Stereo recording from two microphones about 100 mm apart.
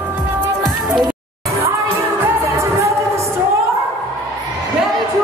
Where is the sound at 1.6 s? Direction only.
25° right (ahead or behind).